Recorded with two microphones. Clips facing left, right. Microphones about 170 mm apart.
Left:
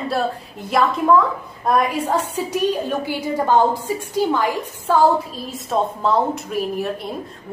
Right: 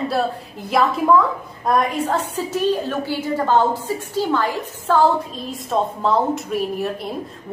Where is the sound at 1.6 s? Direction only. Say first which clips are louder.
Even; 10° left (ahead or behind).